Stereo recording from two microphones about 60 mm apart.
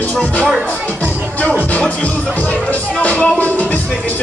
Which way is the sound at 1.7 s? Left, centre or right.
Left.